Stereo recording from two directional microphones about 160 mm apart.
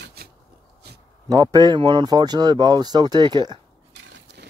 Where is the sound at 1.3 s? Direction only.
25° right (ahead or behind).